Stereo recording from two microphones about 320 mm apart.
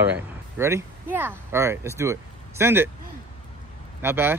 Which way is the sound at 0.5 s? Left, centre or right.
Centre.